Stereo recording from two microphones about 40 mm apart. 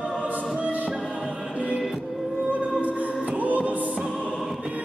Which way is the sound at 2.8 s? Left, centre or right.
Right.